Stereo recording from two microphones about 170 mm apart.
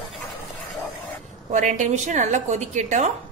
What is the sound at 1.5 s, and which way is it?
A woman's voice, 50° right (ahead or behind).